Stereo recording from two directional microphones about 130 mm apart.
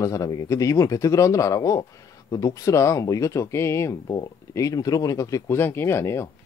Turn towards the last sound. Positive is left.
turn(degrees=20)  # may be behind; listen again after turning